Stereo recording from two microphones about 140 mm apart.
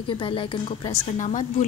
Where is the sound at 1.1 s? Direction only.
60° left (ahead or behind).